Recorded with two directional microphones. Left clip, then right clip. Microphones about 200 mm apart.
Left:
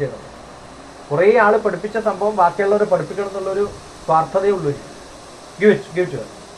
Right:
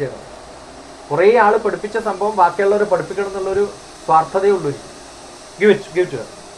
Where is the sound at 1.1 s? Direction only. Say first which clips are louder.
Right 1 dB; 20° right (ahead or behind).